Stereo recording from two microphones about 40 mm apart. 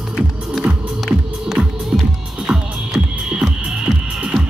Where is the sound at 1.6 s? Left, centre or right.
Centre.